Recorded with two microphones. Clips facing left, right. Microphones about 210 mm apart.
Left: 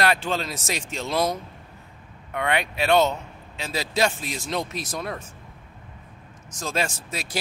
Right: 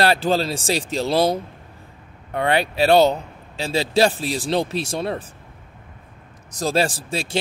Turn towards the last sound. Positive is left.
turn(degrees=-30)  # may be behind; listen again after turning